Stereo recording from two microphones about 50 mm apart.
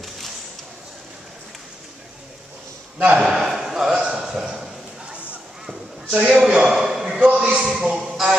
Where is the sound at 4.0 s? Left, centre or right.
Centre.